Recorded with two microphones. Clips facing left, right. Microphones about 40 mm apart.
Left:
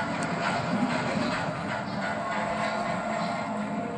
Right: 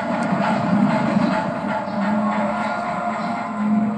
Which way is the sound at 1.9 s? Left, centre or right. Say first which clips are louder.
Right 11 dB; right.